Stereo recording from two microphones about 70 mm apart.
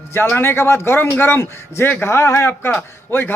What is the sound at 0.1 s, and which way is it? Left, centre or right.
A man's voice, left.